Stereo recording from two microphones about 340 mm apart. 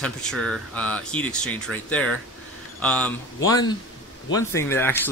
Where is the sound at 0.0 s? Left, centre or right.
Centre.